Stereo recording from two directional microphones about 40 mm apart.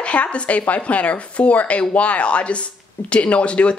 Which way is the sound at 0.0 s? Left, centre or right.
Left.